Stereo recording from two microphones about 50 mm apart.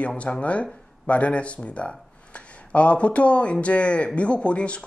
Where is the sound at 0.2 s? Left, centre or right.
Left.